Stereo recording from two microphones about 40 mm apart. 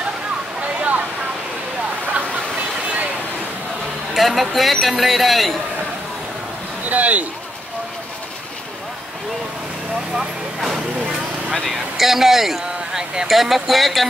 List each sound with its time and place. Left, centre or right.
0.7 s a sound: right
4.1 s speech: centre
6.9 s speech: right
10.1 s vehicle: centre
11.5 s speech: centre
12.0 s a man's voice: centre